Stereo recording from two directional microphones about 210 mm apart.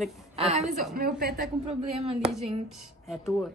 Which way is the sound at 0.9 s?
45° right (ahead or behind).